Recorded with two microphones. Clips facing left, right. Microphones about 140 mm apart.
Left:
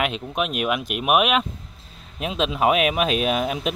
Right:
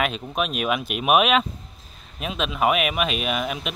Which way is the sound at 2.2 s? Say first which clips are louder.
Left 2 dB; 25° left (ahead or behind).